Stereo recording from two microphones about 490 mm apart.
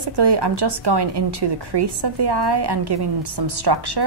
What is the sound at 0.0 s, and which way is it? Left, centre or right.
A woman's voice, right.